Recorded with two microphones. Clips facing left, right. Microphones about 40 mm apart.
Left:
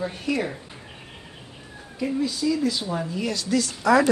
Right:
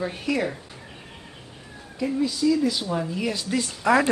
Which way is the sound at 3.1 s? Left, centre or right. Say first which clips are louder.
Left 1 dB; centre.